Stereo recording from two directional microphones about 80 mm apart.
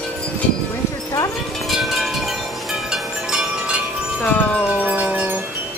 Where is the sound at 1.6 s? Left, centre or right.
Centre.